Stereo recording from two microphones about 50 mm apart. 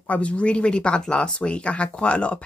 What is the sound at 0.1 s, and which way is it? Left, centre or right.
Speech, left.